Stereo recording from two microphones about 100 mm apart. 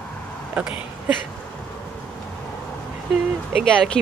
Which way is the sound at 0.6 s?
15° right (ahead or behind).